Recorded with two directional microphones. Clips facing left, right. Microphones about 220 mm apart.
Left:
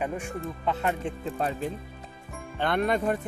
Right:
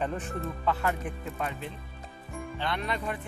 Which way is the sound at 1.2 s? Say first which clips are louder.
Left 8 dB; 35° left (ahead or behind).